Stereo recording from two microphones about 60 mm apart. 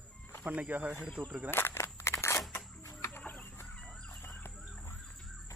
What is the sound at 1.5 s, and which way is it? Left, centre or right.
Single-lens reflex camera, left.